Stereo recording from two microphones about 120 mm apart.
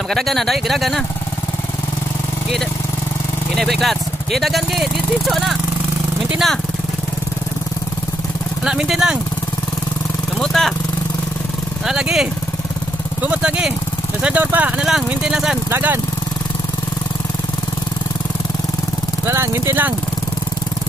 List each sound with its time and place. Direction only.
0.1 s speech: centre (ahead or behind)
3.5 s speech: centre (ahead or behind)
8.6 s speech: 5° right (ahead or behind)
10.4 s speech: 5° left (ahead or behind)
11.8 s speech: 5° right (ahead or behind)
15.7 s speech: 15° right (ahead or behind)
19.2 s speech: 20° right (ahead or behind)